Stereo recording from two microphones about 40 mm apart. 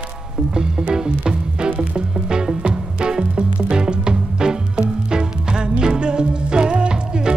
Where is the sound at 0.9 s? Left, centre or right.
Right.